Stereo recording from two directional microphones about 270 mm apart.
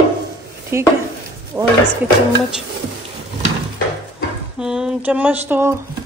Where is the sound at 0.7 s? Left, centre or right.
Centre.